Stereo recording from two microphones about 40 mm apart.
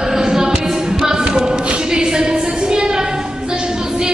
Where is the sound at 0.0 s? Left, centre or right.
Centre.